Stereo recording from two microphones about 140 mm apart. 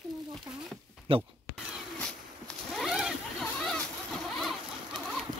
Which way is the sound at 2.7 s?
Centre (ahead or behind).